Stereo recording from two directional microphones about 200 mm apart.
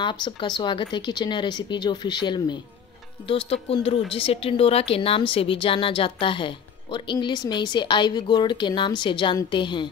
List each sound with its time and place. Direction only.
0.0 s speech: 25° left (ahead or behind)